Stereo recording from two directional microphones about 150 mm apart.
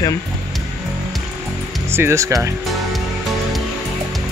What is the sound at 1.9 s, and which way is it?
Speech, 15° right (ahead or behind).